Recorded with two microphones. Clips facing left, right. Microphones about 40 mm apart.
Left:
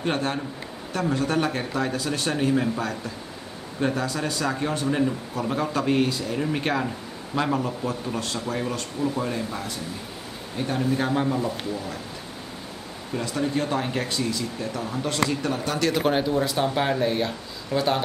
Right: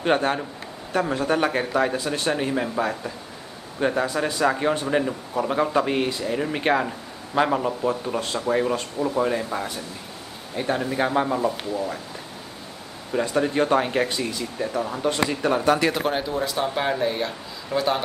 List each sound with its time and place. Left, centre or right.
0.0 s speech: centre
13.1 s speech: right
15.5 s speech: right
15.9 s speech: centre